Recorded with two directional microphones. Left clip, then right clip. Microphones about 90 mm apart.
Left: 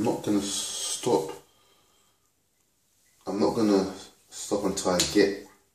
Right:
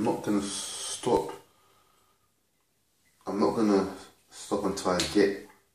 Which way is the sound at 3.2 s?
30° left (ahead or behind).